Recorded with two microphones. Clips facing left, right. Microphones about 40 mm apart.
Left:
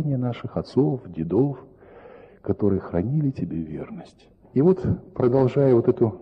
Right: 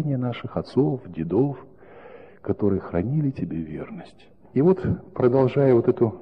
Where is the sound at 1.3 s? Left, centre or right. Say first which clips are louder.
Even; centre.